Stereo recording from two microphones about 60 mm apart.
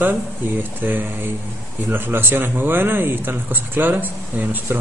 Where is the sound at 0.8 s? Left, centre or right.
Right.